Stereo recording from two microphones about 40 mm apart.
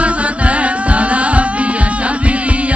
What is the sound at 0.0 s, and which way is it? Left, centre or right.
Music, right.